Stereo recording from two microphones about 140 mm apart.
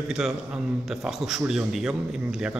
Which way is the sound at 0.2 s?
5° right (ahead or behind).